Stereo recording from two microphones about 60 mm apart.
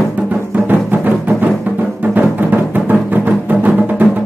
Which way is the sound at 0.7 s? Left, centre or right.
Right.